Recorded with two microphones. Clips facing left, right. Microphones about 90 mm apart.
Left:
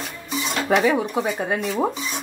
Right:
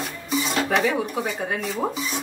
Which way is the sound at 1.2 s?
25° left (ahead or behind).